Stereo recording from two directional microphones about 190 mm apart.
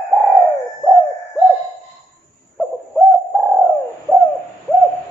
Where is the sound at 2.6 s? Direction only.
Centre (ahead or behind).